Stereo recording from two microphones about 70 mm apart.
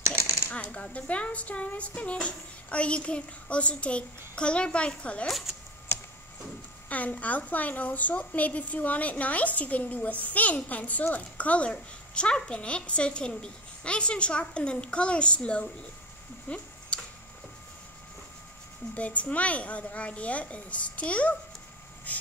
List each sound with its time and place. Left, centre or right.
0.5 s a woman's voice: centre
6.9 s a woman's voice: left
16.4 s a sound: centre
18.9 s a woman's voice: centre
22.1 s vehicle: left